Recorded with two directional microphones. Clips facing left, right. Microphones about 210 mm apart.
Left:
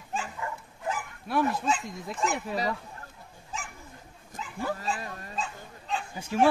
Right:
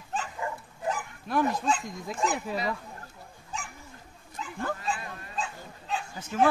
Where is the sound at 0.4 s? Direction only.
30° right (ahead or behind).